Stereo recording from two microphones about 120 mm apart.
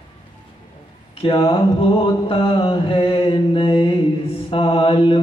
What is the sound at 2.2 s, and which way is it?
Mantra, 45° left (ahead or behind).